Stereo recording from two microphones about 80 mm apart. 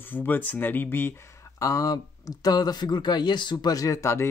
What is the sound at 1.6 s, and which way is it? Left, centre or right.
Speech, left.